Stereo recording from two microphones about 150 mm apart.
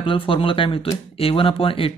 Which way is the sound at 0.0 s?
35° left (ahead or behind).